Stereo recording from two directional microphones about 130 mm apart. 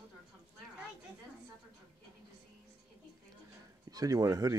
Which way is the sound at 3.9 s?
30° right (ahead or behind).